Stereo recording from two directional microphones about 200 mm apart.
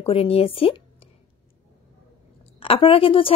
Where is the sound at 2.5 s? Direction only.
30° left (ahead or behind).